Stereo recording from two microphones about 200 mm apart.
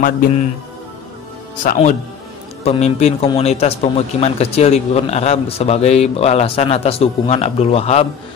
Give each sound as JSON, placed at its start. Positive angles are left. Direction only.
{"t": 1.6, "sound": "speech", "side_deg": 40}